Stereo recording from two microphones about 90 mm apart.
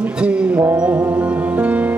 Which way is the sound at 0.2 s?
10° right (ahead or behind).